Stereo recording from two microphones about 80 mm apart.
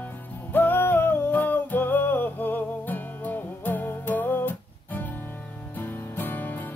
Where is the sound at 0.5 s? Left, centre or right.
Left.